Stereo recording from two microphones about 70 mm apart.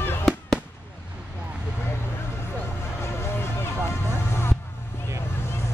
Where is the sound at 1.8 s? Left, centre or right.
Left.